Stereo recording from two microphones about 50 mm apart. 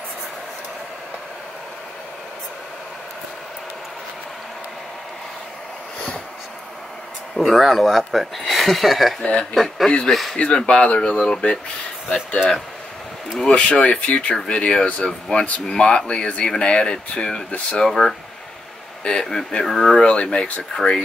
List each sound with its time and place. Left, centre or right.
7.3 s speech: centre
9.2 s speech: left
10.0 s speech: centre
10.3 s speech: centre
13.5 s speech: left
17.8 s speech: centre
20.0 s speech: centre